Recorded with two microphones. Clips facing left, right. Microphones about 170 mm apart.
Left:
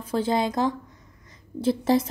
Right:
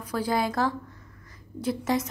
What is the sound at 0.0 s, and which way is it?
Speech, 25° left (ahead or behind).